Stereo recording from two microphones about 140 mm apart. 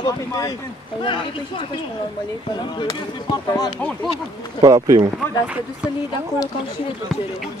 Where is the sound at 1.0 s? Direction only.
35° left (ahead or behind).